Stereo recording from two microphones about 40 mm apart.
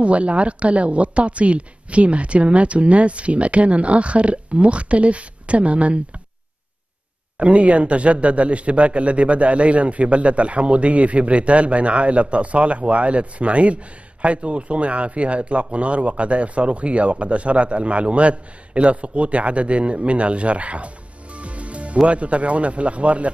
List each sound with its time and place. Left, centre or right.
0.0 s speech: right
7.3 s speech: right